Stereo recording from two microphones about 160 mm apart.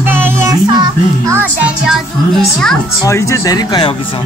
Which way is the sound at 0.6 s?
25° right (ahead or behind).